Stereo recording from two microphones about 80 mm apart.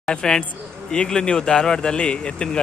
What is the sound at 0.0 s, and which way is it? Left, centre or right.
Speech, centre.